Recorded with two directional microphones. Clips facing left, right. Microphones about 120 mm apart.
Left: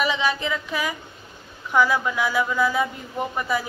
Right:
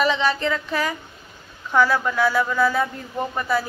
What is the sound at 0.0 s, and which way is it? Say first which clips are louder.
Speech: right 3 dB; 10° left (ahead or behind).